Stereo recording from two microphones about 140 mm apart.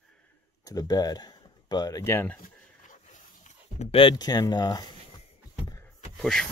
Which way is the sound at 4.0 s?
30° left (ahead or behind).